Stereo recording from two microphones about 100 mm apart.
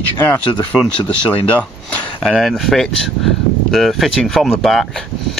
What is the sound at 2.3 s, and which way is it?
Speech, centre (ahead or behind).